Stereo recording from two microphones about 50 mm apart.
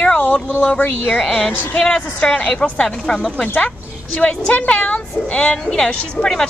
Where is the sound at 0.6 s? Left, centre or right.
Left.